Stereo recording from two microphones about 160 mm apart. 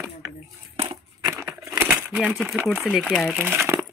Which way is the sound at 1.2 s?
15° right (ahead or behind).